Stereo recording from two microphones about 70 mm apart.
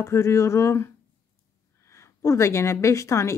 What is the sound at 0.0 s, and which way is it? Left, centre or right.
A woman's voice, left.